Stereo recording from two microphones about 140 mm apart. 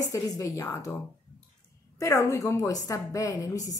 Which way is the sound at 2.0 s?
25° left (ahead or behind).